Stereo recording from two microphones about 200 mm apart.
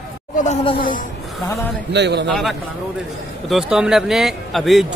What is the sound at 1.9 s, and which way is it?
Speech, 60° right (ahead or behind).